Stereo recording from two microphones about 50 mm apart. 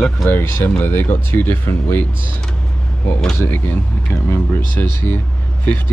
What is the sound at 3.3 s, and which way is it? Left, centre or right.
Speech, left.